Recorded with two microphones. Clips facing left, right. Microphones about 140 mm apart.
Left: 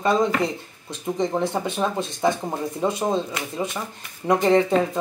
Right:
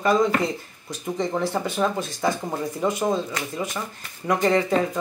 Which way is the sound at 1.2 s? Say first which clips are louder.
Left 1 dB; 20° left (ahead or behind).